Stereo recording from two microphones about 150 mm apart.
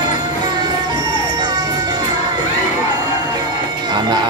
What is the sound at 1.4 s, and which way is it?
Music, 30° right (ahead or behind).